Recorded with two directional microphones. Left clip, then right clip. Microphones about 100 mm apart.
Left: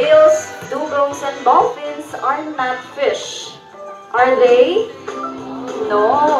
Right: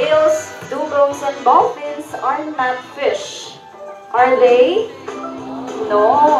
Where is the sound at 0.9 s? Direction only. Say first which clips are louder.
Right 3 dB; 20° left (ahead or behind).